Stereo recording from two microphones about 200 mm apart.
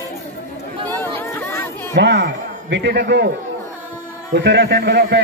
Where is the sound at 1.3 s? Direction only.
15° left (ahead or behind).